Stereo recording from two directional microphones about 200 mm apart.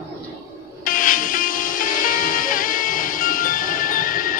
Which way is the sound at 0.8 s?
45° left (ahead or behind).